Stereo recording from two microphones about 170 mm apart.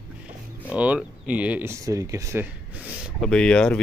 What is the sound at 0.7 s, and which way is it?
Speech, 5° right (ahead or behind).